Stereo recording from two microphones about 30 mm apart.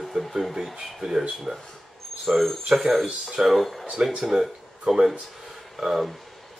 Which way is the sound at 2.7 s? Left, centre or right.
Centre.